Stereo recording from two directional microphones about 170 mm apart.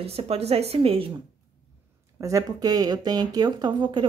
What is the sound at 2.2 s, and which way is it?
A woman's voice, 20° right (ahead or behind).